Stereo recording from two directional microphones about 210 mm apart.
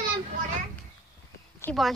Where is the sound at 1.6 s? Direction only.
10° left (ahead or behind).